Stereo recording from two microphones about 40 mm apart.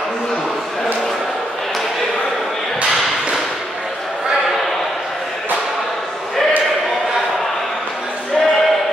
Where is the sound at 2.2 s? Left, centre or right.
Centre.